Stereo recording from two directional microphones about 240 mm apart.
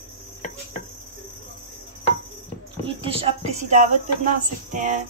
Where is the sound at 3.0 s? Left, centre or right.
Right.